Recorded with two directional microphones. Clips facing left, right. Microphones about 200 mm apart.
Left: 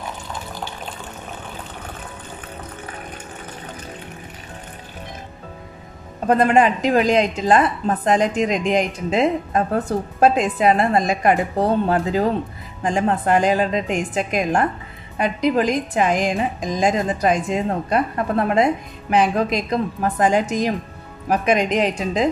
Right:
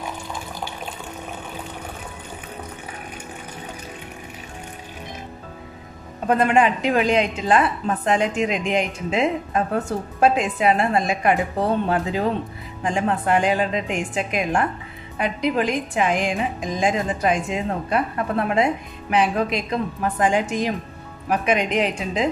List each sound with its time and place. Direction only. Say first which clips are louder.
6.2 s a woman's voice: left 2 dB; 40° left (ahead or behind)